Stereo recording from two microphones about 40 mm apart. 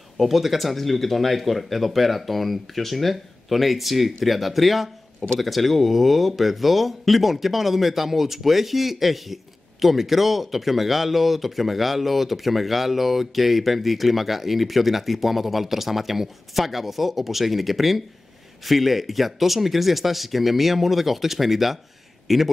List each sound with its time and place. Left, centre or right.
0.2 s speech: centre